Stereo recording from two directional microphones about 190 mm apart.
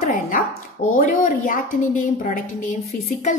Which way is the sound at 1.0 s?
45° left (ahead or behind).